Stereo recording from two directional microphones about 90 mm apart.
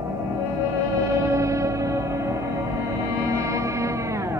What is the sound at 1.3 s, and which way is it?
Music, 35° right (ahead or behind).